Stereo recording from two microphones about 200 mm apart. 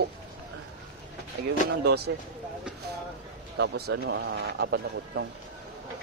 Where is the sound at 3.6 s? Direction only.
55° right (ahead or behind).